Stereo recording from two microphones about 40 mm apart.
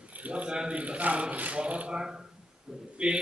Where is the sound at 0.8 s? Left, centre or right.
Right.